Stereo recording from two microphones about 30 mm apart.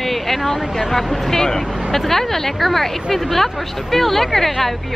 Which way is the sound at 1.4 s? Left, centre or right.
Centre.